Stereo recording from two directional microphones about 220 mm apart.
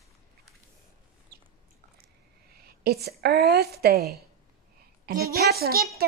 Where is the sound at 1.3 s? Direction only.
45° right (ahead or behind).